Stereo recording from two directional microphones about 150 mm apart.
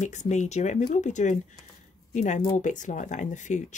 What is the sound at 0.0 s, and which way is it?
Speech, 50° left (ahead or behind).